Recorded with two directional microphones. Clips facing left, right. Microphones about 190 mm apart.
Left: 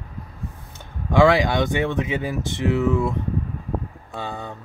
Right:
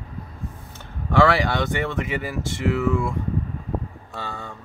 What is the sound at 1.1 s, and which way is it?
Speech, 15° left (ahead or behind).